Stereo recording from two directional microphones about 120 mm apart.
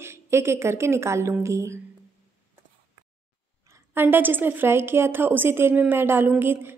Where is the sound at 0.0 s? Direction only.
20° right (ahead or behind).